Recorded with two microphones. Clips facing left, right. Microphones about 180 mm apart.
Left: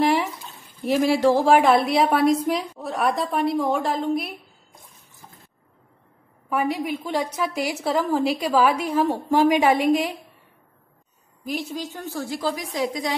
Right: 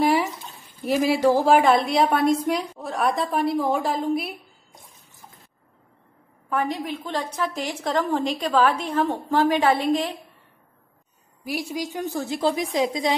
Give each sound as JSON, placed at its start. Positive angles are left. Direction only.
{"t": 0.0, "sound": "a sound", "side_deg": 0}
{"t": 0.8, "sound": "a woman's voice", "side_deg": 0}
{"t": 6.5, "sound": "a woman's voice", "side_deg": 10}
{"t": 11.4, "sound": "a woman's voice", "side_deg": -10}